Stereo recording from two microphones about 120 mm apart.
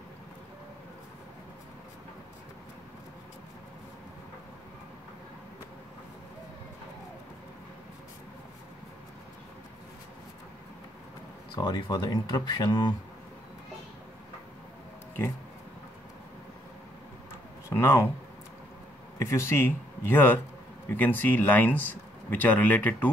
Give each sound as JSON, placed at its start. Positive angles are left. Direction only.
{"t": 11.5, "sound": "speech", "side_deg": 35}
{"t": 17.6, "sound": "a sound", "side_deg": 20}
{"t": 19.1, "sound": "speech", "side_deg": 25}